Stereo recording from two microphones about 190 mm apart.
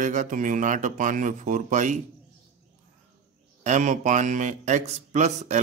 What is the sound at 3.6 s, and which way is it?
A man's voice, 40° right (ahead or behind).